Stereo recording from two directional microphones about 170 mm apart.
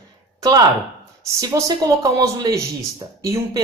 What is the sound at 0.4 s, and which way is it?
A woman's voice, 25° right (ahead or behind).